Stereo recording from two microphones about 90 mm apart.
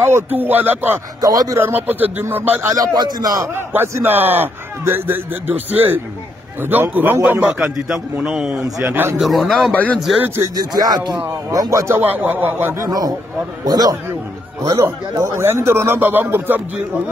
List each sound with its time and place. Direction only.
0.0 s a man's voice: 25° right (ahead or behind)
1.2 s speech: 45° right (ahead or behind)
1.6 s a man's voice: 20° right (ahead or behind)
2.7 s speech: 45° right (ahead or behind)
3.5 s a man's voice: 25° right (ahead or behind)
7.5 s a man's voice: 5° right (ahead or behind)
8.9 s a man's voice: 20° right (ahead or behind)
9.2 s a man's voice: centre (ahead or behind)
10.2 s a man's voice: 30° right (ahead or behind)
10.5 s speech: 45° right (ahead or behind)
11.9 s a man's voice: 20° right (ahead or behind)
12.7 s a man's voice: 40° right (ahead or behind); by 16.8 s 20° right (ahead or behind)